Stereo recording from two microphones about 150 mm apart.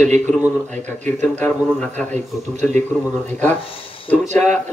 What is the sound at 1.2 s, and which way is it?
Speech, 10° left (ahead or behind).